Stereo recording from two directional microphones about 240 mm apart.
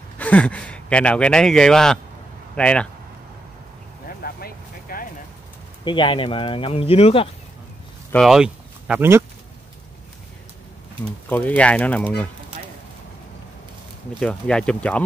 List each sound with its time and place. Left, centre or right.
0.2 s speech: centre
4.2 s vehicle: left
5.9 s speech: left
8.1 s speech: centre
11.2 s speech: centre
14.2 s speech: centre